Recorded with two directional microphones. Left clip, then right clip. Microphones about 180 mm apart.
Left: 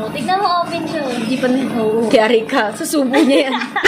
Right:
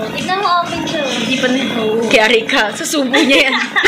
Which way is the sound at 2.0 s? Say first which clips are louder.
Right 3 dB; 25° left (ahead or behind).